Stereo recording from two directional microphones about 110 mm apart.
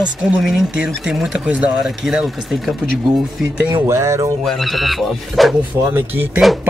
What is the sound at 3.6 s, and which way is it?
Speech, 20° right (ahead or behind).